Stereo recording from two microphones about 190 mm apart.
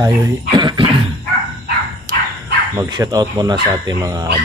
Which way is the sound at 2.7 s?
20° right (ahead or behind).